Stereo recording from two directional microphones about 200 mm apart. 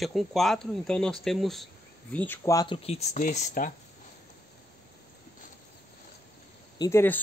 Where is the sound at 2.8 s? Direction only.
35° left (ahead or behind).